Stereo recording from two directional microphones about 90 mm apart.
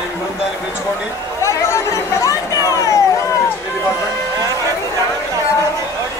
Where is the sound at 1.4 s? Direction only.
35° left (ahead or behind).